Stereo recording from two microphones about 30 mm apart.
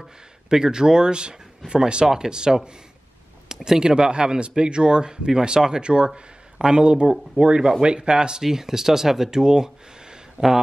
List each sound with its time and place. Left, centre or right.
0.5 s speech: right